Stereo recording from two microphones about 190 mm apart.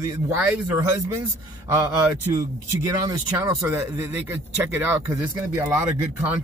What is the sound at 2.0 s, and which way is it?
A man's voice, 10° right (ahead or behind).